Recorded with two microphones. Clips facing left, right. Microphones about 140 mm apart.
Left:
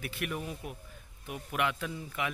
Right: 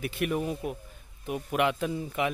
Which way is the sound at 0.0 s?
25° right (ahead or behind).